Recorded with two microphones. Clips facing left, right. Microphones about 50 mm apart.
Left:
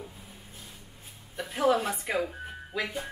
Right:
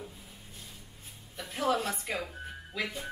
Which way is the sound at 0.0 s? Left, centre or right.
Centre.